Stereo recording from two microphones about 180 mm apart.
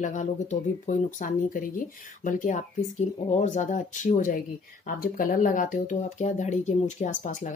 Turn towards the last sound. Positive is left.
turn(degrees=45)  # may be behind; listen again after turning